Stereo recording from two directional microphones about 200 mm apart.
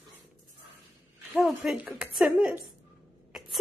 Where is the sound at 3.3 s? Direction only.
Centre (ahead or behind).